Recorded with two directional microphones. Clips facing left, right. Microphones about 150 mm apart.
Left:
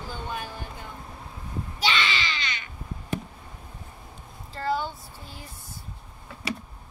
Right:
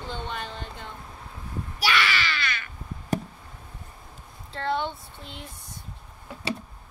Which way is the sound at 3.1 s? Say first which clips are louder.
Right 4 dB; 45° right (ahead or behind).